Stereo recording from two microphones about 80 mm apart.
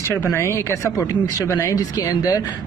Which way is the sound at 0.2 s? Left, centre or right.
Left.